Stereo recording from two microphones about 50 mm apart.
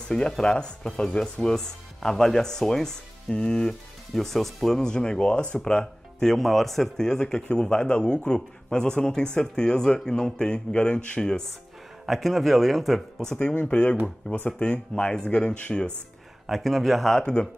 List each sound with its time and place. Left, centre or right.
0.4 s speech: centre
4.1 s speech: centre
4.7 s speech: centre
12.1 s speech: centre
13.3 s speech: left
16.4 s speech: centre
17.2 s speech: centre